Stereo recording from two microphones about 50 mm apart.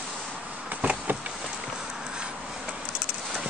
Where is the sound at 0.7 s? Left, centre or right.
Right.